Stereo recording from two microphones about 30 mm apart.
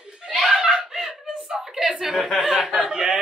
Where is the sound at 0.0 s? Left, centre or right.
Right.